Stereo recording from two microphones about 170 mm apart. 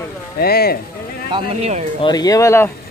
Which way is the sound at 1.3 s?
40° right (ahead or behind).